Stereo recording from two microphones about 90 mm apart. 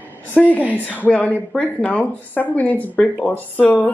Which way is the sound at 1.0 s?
15° left (ahead or behind).